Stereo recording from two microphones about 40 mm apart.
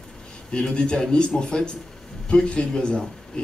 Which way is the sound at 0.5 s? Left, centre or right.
Left.